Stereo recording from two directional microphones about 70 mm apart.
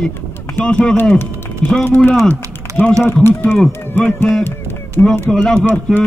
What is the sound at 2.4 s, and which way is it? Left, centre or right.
Typing, right.